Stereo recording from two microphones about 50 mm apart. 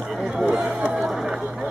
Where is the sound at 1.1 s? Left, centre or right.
Centre.